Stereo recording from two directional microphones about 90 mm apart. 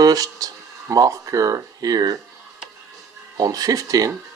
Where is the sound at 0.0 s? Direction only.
45° right (ahead or behind).